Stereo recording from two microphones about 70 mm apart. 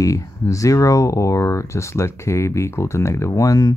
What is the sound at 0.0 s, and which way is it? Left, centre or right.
Speech, left.